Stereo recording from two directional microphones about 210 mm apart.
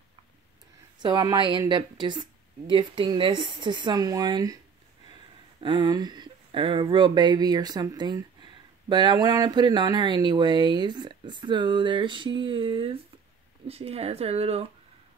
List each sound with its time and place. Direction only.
1.0 s speech: 20° right (ahead or behind)
5.6 s speech: 20° right (ahead or behind)